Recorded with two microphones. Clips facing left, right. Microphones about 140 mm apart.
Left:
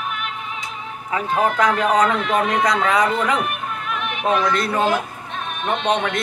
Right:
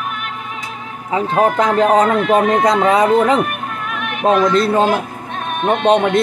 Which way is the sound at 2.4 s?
50° right (ahead or behind).